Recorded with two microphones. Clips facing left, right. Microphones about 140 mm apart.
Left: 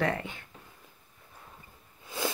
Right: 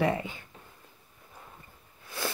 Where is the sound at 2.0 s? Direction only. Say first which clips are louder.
Left 2 dB; 20° left (ahead or behind).